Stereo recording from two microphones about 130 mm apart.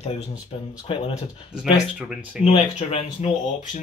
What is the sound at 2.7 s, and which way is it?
Speech, 55° left (ahead or behind).